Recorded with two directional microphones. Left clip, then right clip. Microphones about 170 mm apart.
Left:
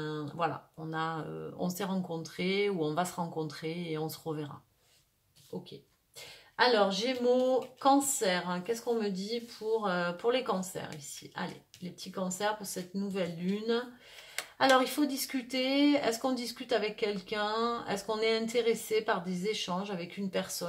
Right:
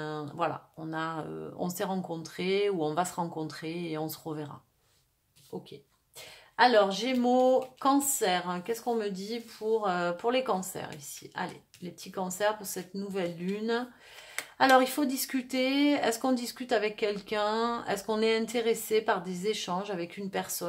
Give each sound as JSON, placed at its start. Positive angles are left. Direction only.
{"t": 0.0, "sound": "speech", "side_deg": -25}
{"t": 6.5, "sound": "speech", "side_deg": -25}